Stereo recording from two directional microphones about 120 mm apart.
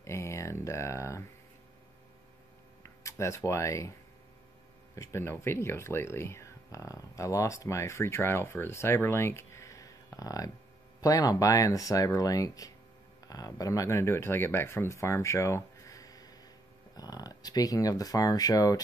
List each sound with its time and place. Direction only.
0.0 s a sound: 25° left (ahead or behind)
2.8 s speech: 25° left (ahead or behind)
4.9 s speech: 25° left (ahead or behind)